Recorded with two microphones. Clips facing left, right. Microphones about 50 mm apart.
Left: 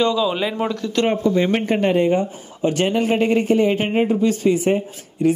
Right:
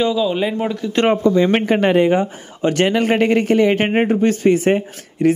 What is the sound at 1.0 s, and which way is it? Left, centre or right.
A man's voice, right.